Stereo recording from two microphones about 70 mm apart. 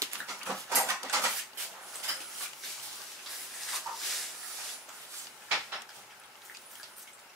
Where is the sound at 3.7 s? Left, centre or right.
Centre.